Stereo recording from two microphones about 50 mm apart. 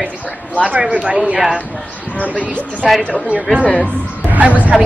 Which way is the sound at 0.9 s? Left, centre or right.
Right.